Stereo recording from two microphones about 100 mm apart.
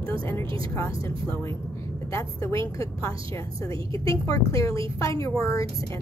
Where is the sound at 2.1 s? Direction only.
30° left (ahead or behind).